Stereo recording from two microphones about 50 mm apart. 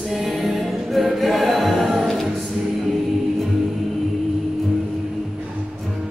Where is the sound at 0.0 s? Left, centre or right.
Centre.